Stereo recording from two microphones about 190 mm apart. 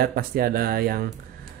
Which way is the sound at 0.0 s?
50° right (ahead or behind).